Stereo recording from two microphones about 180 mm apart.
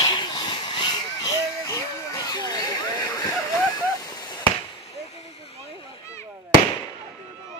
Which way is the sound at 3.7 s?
20° left (ahead or behind).